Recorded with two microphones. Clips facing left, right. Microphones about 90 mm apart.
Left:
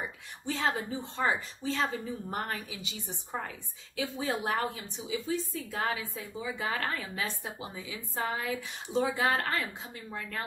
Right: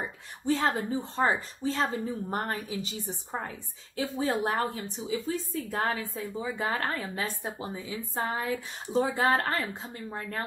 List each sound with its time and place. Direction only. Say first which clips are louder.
0.5 s a woman's voice: right 4 dB; 40° right (ahead or behind)